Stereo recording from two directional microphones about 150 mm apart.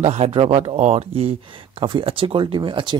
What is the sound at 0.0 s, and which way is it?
Speech, 45° right (ahead or behind).